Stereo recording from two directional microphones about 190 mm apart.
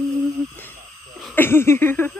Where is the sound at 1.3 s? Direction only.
10° left (ahead or behind).